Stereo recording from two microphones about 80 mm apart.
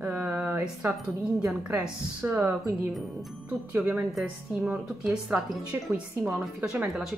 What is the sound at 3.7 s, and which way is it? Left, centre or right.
Music, right.